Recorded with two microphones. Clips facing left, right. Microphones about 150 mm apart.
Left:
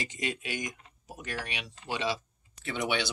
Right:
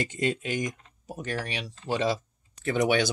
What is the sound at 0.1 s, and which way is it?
Speech, 50° right (ahead or behind).